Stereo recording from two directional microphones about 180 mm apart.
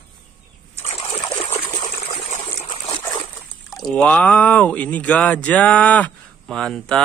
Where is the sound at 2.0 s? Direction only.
30° left (ahead or behind).